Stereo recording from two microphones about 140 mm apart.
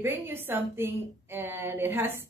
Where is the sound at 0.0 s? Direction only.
15° right (ahead or behind).